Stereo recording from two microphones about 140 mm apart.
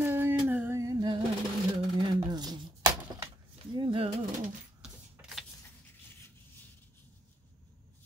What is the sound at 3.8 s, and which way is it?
Pigeon, 40° right (ahead or behind).